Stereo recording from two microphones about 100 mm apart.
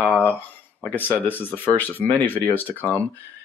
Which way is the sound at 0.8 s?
20° left (ahead or behind).